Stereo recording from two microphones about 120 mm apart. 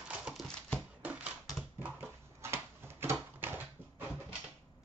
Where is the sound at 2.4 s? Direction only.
20° right (ahead or behind).